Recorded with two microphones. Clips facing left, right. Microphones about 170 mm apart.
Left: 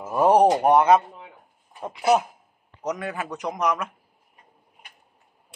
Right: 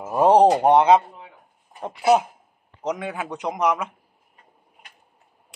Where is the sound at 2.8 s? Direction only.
25° right (ahead or behind).